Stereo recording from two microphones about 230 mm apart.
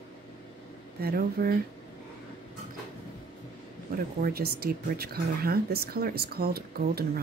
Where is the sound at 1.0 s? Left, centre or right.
Right.